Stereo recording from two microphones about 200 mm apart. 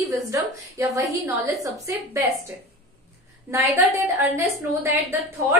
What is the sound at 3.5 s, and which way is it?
Speech, 15° right (ahead or behind).